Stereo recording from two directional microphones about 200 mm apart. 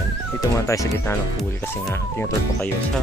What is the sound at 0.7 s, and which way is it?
Speech, 15° left (ahead or behind).